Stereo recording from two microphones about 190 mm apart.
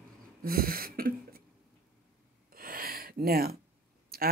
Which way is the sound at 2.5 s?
50° right (ahead or behind).